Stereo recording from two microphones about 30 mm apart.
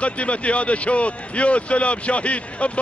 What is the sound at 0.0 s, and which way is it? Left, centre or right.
Speech, left.